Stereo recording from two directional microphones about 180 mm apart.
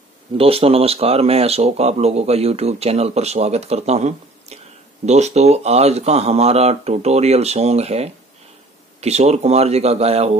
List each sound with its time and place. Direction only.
0.4 s speech: 30° right (ahead or behind)